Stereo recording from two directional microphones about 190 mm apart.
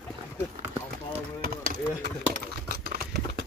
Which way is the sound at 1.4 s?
50° right (ahead or behind).